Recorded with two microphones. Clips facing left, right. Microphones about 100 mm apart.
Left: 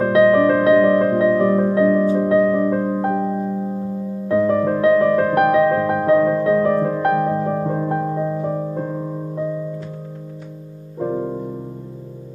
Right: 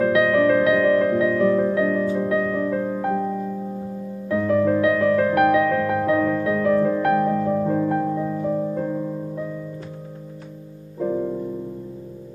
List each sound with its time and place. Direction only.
0.0 s music: 35° left (ahead or behind)
11.0 s music: 30° left (ahead or behind)